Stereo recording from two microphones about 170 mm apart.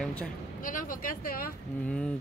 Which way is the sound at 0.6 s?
55° left (ahead or behind).